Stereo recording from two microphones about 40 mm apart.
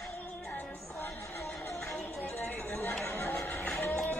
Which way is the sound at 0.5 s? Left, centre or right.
Left.